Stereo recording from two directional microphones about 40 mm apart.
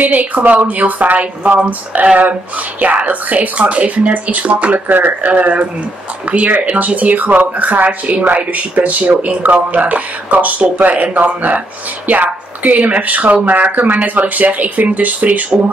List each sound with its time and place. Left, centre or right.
0.0 s speech: right
4.8 s speech: right
5.3 s speech: right